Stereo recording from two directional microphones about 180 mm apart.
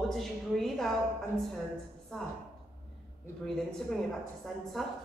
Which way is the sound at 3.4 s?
5° left (ahead or behind).